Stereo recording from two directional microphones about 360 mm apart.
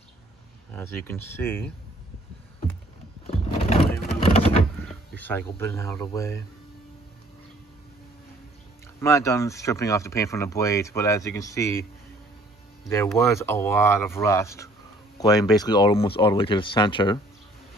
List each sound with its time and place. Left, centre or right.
0.7 s speech: centre
3.3 s a sound: centre
4.8 s speech: centre
9.0 s speech: centre
12.9 s speech: centre